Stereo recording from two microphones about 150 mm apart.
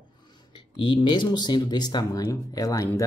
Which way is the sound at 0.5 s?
30° left (ahead or behind).